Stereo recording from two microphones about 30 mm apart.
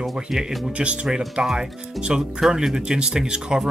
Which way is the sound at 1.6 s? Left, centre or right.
Right.